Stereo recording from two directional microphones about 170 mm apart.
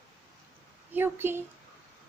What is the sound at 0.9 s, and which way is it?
Speech, 15° right (ahead or behind).